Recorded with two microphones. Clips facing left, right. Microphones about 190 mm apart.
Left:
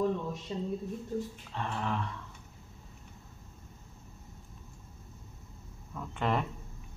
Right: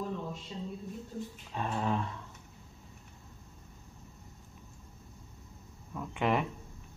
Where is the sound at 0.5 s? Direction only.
50° left (ahead or behind).